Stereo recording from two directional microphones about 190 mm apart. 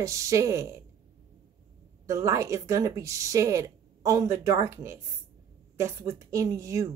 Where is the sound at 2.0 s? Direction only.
15° right (ahead or behind).